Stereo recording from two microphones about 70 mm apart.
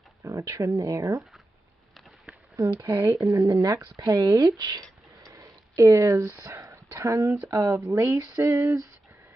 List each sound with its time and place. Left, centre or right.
0.2 s speech: right
2.5 s speech: right
2.9 s speech: right
3.2 s a sound: right
5.3 s speech: right
7.9 s a sound: right